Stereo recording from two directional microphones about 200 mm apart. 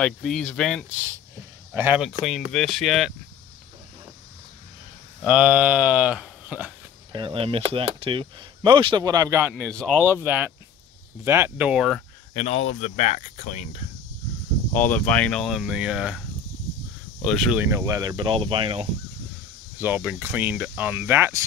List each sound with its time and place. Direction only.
0.0 s speech: 5° left (ahead or behind)
5.2 s speech: 5° right (ahead or behind)
7.1 s speech: 25° right (ahead or behind)
9.5 s speech: 5° left (ahead or behind)
10.1 s speech: 10° right (ahead or behind)
12.4 s speech: 30° left (ahead or behind)
14.7 s speech: 10° left (ahead or behind)
17.6 s speech: 15° right (ahead or behind)
19.8 s speech: 10° right (ahead or behind)